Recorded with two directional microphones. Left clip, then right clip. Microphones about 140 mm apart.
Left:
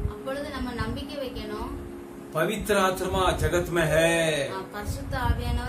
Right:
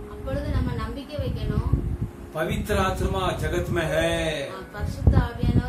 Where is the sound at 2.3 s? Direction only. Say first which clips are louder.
Left 2 dB; 20° left (ahead or behind).